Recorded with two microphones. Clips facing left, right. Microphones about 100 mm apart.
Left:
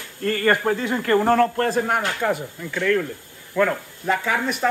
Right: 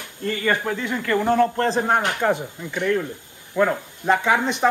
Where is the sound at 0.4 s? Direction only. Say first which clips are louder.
Left 3 dB; 50° left (ahead or behind).